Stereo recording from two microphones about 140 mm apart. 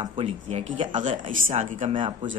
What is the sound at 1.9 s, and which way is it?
Speech, 40° right (ahead or behind).